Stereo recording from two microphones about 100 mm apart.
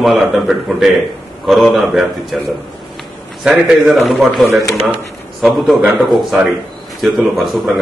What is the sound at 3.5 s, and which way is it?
A man's voice, 5° right (ahead or behind).